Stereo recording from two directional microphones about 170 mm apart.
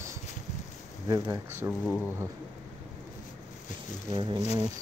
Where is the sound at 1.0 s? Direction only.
20° right (ahead or behind).